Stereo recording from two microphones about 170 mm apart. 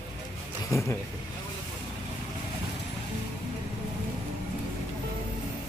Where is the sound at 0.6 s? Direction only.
15° left (ahead or behind).